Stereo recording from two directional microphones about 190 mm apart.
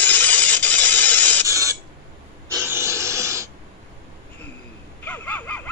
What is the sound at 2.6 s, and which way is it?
Snort, 15° right (ahead or behind).